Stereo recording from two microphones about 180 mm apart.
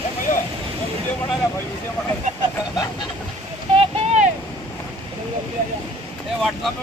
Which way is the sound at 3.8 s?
40° right (ahead or behind).